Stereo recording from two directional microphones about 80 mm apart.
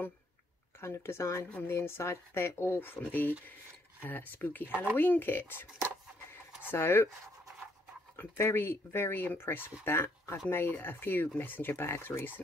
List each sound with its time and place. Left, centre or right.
0.7 s speech: left
6.7 s speech: left
8.2 s speech: left